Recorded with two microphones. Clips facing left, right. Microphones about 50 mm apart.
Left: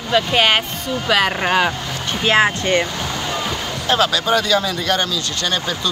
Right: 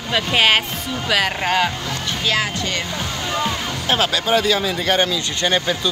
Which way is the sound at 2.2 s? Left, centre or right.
Left.